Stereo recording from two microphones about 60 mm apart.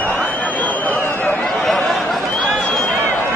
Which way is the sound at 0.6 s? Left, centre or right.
Left.